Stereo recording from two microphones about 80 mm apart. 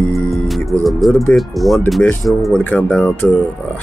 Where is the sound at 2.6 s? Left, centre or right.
Left.